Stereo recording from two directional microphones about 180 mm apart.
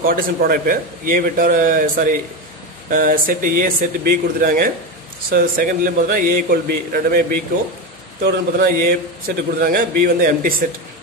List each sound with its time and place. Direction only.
0.0 s a man's voice: 55° right (ahead or behind)